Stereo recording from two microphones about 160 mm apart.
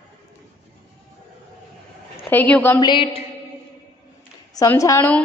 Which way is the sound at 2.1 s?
10° left (ahead or behind).